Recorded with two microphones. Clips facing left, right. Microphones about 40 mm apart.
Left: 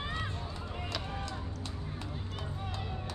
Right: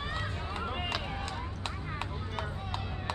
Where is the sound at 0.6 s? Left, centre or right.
Right.